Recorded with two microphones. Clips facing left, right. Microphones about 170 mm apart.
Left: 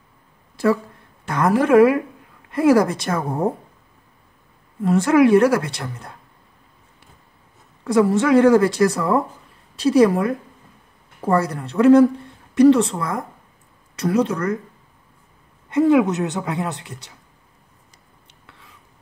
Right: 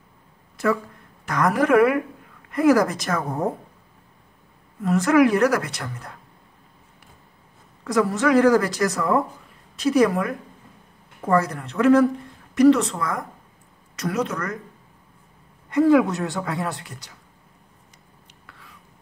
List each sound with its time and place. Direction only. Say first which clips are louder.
1.2 s a woman's voice: left 2 dB; 25° left (ahead or behind)
4.8 s a woman's voice: left 2 dB; 30° left (ahead or behind)
7.8 s a woman's voice: left 4 dB; 25° left (ahead or behind)
15.7 s a woman's voice: left 1 dB; 25° left (ahead or behind)